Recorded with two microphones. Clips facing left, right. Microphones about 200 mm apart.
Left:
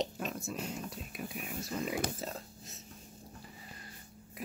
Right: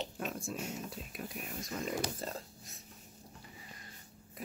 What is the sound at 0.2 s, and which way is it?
Speech, centre (ahead or behind).